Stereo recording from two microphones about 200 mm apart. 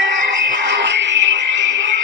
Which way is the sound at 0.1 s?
65° right (ahead or behind).